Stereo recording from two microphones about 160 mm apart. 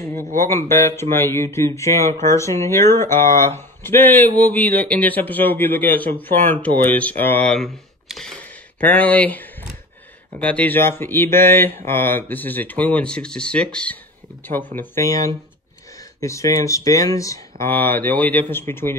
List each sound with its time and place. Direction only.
0.0 s a sound: 15° left (ahead or behind)
0.4 s speech: 15° left (ahead or behind)
14.8 s speech: 20° left (ahead or behind)